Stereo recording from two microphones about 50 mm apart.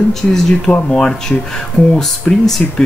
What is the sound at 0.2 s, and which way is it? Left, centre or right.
Speech, centre.